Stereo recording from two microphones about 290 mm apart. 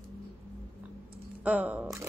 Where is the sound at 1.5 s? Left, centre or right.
Centre.